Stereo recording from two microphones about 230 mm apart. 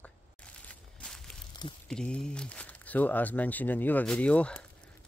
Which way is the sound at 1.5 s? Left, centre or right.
Centre.